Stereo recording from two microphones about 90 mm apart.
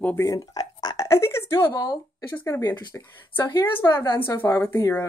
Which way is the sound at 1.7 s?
50° left (ahead or behind).